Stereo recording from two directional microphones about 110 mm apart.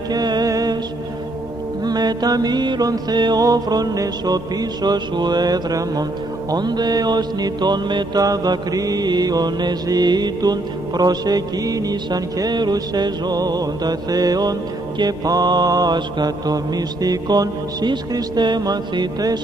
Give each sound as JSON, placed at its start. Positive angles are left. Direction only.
{"t": 0.1, "sound": "music", "side_deg": -40}
{"t": 1.9, "sound": "music", "side_deg": -40}